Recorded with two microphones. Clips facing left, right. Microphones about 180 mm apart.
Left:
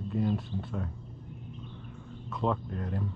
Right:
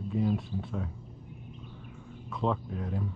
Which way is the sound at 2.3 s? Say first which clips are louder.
Even; centre (ahead or behind).